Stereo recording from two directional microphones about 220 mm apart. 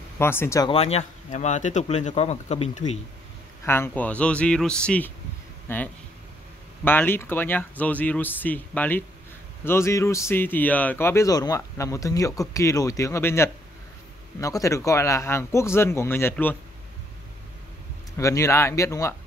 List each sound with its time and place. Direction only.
0.2 s speech: 10° left (ahead or behind)
0.7 s speech: 30° left (ahead or behind)
3.6 s speech: 10° left (ahead or behind)
18.1 s speech: 15° left (ahead or behind)